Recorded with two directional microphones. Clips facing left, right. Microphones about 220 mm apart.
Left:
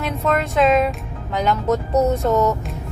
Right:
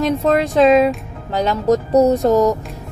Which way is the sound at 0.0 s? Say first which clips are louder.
Right 6 dB; 35° right (ahead or behind).